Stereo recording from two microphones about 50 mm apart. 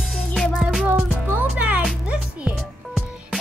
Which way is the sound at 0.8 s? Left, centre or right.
Right.